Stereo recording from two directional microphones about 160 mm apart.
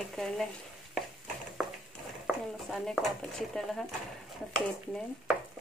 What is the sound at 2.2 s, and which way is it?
Speech, centre (ahead or behind).